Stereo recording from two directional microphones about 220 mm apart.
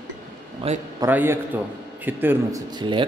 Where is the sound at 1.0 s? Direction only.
10° right (ahead or behind).